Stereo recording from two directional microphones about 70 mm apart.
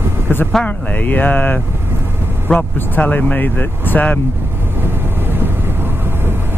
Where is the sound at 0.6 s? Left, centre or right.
Left.